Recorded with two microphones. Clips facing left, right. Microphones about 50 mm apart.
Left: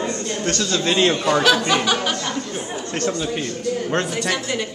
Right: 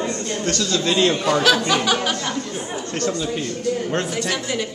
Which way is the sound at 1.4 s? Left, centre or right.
Centre.